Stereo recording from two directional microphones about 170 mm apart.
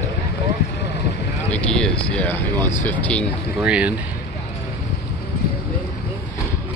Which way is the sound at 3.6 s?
5° right (ahead or behind).